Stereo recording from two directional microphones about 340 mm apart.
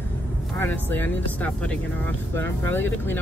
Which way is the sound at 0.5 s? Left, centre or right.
Centre.